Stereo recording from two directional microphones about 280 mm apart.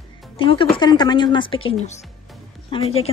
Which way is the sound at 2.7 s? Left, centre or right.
Centre.